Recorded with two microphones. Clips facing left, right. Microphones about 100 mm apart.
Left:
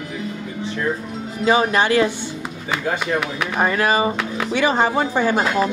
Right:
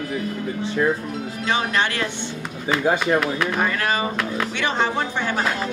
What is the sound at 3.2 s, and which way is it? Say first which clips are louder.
Speech: right 2 dB; centre (ahead or behind).